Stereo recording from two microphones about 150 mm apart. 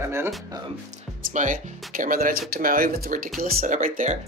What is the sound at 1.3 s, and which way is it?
Speech, 60° right (ahead or behind).